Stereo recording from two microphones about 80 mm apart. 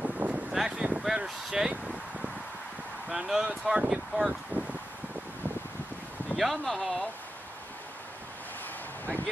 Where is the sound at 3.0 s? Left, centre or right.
Centre.